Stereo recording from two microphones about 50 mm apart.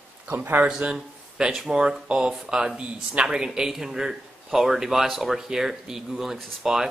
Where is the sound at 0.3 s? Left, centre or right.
Right.